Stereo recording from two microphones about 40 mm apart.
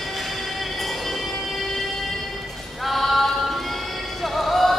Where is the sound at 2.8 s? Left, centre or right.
Centre.